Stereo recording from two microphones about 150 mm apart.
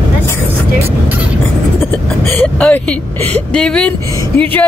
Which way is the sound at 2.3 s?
5° left (ahead or behind).